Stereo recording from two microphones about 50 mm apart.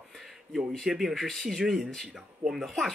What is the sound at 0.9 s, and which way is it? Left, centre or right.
Speech, centre.